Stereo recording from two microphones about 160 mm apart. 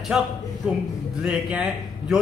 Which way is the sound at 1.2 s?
5° right (ahead or behind).